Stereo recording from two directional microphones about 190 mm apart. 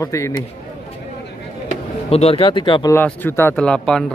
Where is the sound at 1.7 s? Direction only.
35° left (ahead or behind).